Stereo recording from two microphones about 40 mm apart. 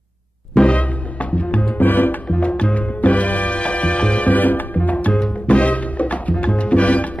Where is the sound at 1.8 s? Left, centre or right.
Left.